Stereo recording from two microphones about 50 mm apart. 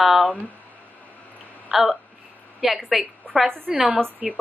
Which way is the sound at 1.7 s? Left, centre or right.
Centre.